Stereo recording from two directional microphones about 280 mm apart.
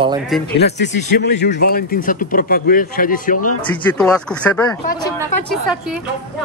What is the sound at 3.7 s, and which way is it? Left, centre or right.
Speech, centre.